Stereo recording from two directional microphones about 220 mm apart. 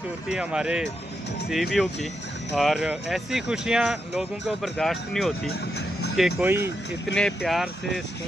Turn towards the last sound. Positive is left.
turn(degrees=0)  # may be behind; listen again after turning